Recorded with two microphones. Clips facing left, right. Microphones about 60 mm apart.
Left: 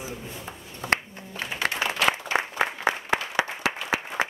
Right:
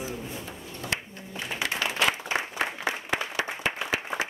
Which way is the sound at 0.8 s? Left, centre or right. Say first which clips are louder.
Left 7 dB; left.